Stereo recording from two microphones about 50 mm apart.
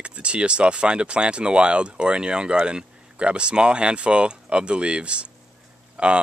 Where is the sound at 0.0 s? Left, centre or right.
Right.